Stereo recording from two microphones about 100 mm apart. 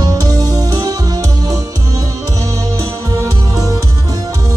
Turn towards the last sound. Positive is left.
turn(degrees=-35)  # may be behind; listen again after turning